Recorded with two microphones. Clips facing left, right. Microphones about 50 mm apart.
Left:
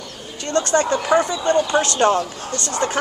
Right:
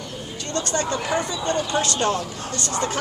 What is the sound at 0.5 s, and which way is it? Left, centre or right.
Speech, left.